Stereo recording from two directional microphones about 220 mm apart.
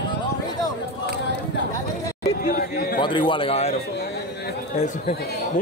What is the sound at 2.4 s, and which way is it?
Chatter, 40° left (ahead or behind).